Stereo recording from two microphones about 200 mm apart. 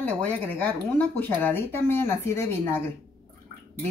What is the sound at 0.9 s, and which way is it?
Speech, 10° left (ahead or behind).